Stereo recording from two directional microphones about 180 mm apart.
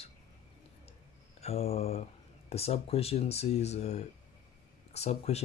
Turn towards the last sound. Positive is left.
turn(degrees=35)  # may be behind; listen again after turning